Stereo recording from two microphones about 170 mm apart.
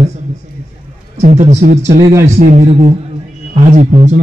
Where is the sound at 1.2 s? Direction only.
40° right (ahead or behind).